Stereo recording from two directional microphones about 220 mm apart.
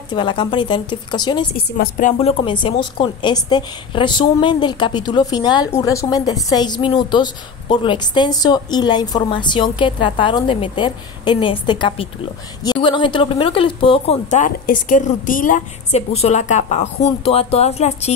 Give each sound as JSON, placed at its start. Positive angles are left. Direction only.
{"t": 0.1, "sound": "speech", "side_deg": 20}
{"t": 1.8, "sound": "speech", "side_deg": 35}